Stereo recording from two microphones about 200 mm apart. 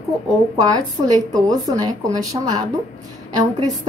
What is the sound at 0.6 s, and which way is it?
A woman's voice, 20° right (ahead or behind).